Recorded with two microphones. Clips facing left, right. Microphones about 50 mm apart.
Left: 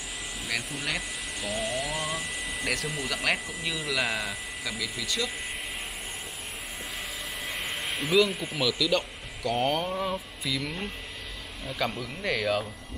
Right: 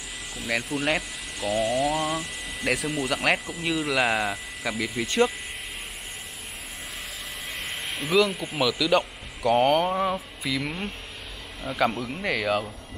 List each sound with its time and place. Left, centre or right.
0.9 s speech: centre
4.9 s speech: right
7.5 s speech: centre
9.8 s speech: right
10.1 s a sound: centre
12.0 s a sound: centre